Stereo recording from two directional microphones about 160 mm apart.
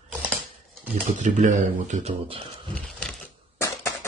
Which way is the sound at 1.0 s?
50° right (ahead or behind).